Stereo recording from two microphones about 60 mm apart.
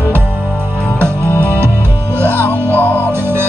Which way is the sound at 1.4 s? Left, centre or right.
Right.